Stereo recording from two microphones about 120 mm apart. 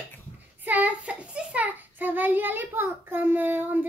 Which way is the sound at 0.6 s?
15° right (ahead or behind).